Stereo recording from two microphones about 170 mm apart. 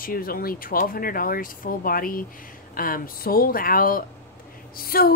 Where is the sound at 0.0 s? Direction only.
60° left (ahead or behind).